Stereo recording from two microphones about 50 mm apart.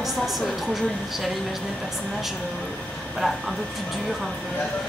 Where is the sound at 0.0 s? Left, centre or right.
Centre.